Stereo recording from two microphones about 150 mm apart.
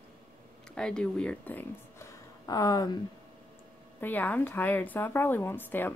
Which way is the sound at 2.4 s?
25° left (ahead or behind).